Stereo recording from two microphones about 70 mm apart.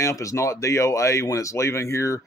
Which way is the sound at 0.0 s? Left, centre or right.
Left.